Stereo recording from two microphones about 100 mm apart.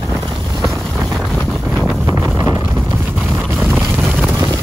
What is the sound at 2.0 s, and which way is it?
Wind noise, 25° right (ahead or behind).